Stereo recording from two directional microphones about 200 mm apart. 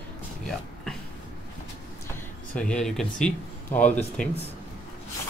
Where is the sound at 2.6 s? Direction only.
5° left (ahead or behind).